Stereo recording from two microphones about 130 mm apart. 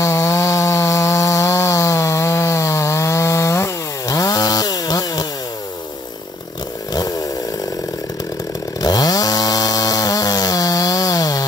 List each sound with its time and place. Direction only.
0.0 s chainsaw: 20° left (ahead or behind)
6.9 s chainsaw: 30° left (ahead or behind)
8.8 s chainsaw: 30° left (ahead or behind)